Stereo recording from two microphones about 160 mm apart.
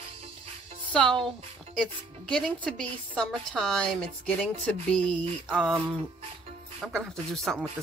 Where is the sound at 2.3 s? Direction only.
5° left (ahead or behind).